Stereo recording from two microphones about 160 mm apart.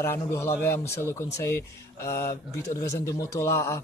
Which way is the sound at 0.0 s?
15° left (ahead or behind).